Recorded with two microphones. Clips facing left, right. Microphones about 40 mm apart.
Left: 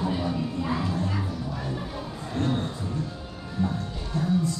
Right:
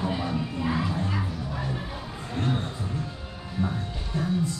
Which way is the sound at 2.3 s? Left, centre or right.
Centre.